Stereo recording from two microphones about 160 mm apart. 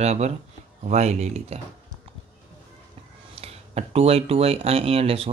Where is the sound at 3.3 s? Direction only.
40° right (ahead or behind).